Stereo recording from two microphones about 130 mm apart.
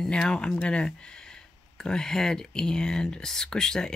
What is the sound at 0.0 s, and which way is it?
Speech, 5° left (ahead or behind).